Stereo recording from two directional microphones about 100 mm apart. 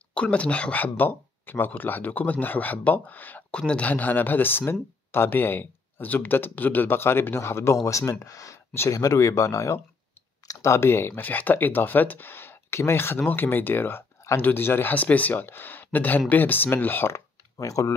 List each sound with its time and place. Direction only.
0.1 s speech: 10° left (ahead or behind); by 17.9 s 35° left (ahead or behind)